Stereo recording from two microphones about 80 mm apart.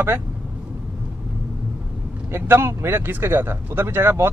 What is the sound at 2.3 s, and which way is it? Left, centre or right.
Speech, right.